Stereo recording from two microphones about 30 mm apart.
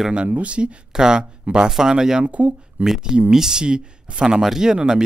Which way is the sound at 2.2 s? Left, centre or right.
Right.